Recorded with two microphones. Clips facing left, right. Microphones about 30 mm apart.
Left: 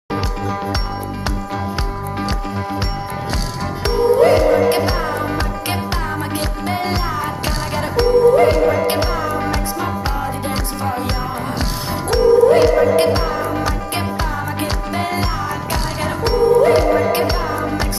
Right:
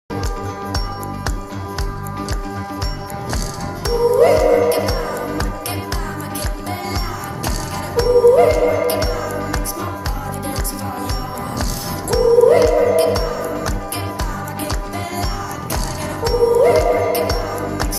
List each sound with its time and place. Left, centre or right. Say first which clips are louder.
2.1 s music: left 3 dB; left
3.8 s music: even; left
12.1 s music: even; left